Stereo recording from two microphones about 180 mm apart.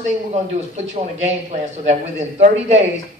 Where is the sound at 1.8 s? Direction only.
40° right (ahead or behind).